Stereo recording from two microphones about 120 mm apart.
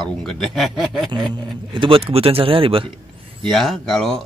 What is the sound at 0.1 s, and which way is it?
Speech, 5° left (ahead or behind).